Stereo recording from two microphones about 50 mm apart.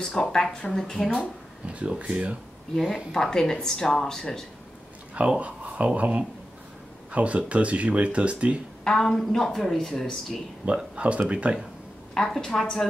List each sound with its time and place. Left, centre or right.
0.0 s speech: centre
1.7 s speech: right
2.7 s speech: centre
5.4 s speech: right
8.8 s speech: centre
10.6 s speech: right
12.1 s speech: centre